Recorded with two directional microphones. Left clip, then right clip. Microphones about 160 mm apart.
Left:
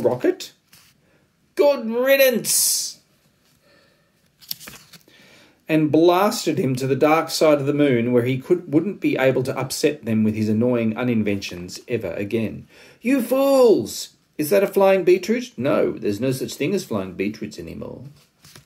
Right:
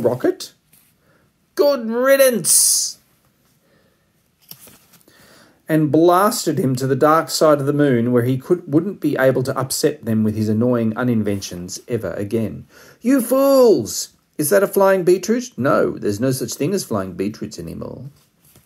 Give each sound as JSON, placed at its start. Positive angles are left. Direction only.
{"t": 0.0, "sound": "a sound", "side_deg": 20}
{"t": 1.5, "sound": "speech", "side_deg": 20}
{"t": 5.4, "sound": "speech", "side_deg": 25}